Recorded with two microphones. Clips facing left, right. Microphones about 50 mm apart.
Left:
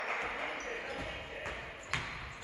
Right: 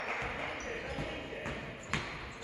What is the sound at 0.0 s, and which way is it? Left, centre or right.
Basketball bounce, centre.